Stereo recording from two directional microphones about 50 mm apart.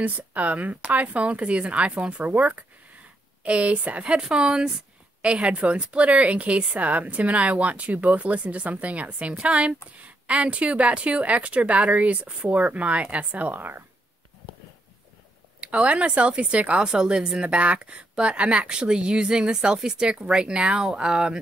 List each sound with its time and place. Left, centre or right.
0.0 s speech: right
3.4 s speech: right
4.2 s speech: centre; by 13.8 s right
15.6 s speech: right